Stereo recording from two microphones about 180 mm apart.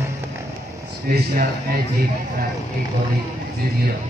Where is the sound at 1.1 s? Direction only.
50° right (ahead or behind).